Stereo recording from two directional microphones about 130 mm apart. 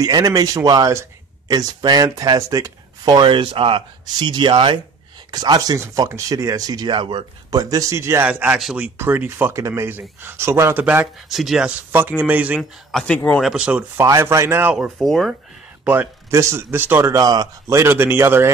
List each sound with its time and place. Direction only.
0.0 s speech: 30° right (ahead or behind)
8.3 s speech: 10° right (ahead or behind)
11.2 s speech: centre (ahead or behind)
12.9 s speech: 10° left (ahead or behind)
13.4 s speech: 5° right (ahead or behind)
14.0 s speech: 25° right (ahead or behind)
14.8 s speech: centre (ahead or behind)
15.8 s speech: 15° right (ahead or behind)